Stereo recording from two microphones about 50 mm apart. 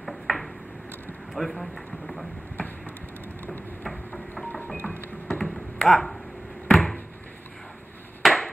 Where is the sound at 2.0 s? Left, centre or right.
Centre.